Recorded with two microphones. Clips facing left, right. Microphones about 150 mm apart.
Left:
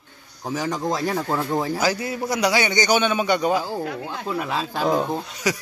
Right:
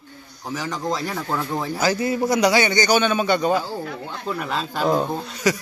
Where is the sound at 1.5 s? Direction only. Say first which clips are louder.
Right 1 dB; 10° left (ahead or behind).